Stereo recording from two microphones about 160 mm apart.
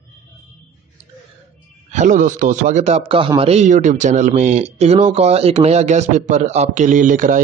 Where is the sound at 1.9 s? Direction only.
50° right (ahead or behind).